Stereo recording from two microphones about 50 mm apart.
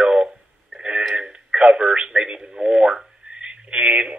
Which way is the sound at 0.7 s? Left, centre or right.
Right.